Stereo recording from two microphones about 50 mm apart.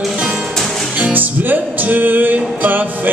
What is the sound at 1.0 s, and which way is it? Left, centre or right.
Music, right.